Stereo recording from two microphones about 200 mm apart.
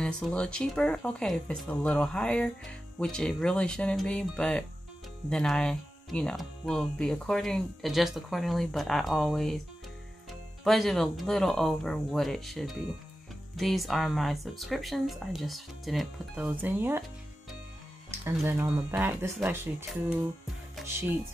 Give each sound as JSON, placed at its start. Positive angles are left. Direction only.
{"t": 0.0, "sound": "speech", "side_deg": 5}
{"t": 10.6, "sound": "speech", "side_deg": 0}
{"t": 18.2, "sound": "speech", "side_deg": -10}